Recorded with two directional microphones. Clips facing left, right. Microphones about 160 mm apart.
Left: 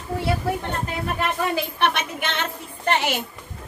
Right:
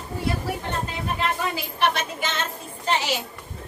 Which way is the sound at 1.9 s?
60° left (ahead or behind).